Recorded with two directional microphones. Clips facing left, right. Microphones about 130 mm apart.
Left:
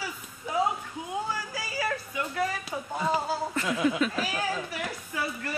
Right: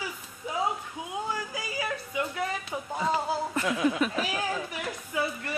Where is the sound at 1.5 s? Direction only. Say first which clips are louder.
Left 1 dB; 20° right (ahead or behind).